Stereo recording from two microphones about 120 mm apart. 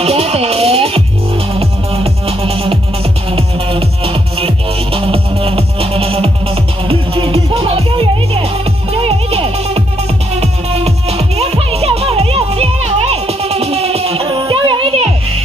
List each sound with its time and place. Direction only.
0.0 s music: 60° right (ahead or behind)